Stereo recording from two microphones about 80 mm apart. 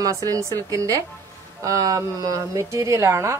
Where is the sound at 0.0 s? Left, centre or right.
Right.